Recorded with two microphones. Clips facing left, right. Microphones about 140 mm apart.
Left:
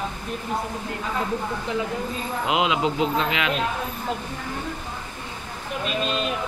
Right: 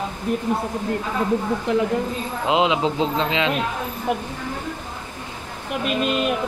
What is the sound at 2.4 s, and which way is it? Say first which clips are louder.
A man's voice: right 3 dB; 25° right (ahead or behind).